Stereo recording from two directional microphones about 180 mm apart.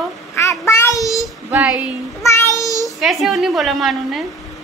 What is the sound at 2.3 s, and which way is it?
Child singing, 15° left (ahead or behind).